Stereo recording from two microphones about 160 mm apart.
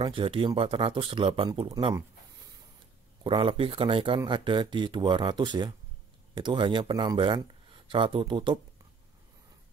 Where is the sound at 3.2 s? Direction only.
30° right (ahead or behind).